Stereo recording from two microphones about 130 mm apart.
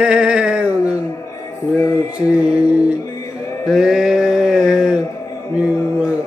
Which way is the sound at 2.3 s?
10° right (ahead or behind).